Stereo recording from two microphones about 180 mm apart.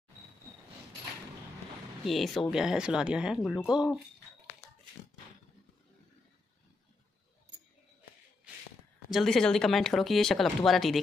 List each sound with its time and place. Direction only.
2.0 s speech: centre (ahead or behind)
9.1 s speech: centre (ahead or behind)